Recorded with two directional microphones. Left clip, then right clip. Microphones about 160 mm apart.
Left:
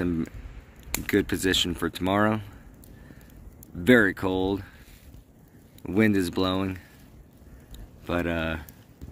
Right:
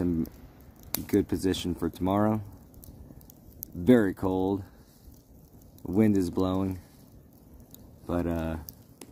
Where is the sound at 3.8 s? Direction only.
10° right (ahead or behind).